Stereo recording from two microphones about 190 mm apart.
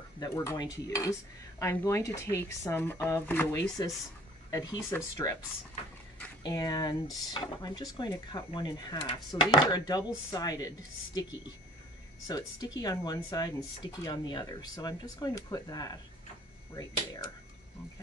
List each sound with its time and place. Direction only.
0.2 s speech: 15° left (ahead or behind)
6.4 s speech: 20° left (ahead or behind)